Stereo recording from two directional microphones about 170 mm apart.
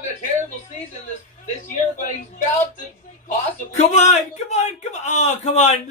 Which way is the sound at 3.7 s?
40° left (ahead or behind).